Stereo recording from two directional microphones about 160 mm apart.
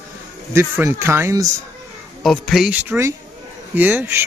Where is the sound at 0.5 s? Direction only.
15° right (ahead or behind).